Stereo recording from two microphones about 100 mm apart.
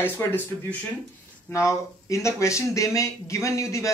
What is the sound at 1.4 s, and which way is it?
Speech, 30° left (ahead or behind).